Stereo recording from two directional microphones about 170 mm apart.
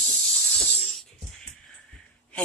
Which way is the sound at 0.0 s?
5° left (ahead or behind).